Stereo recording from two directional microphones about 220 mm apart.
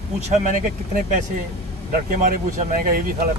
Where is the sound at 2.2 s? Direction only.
40° right (ahead or behind).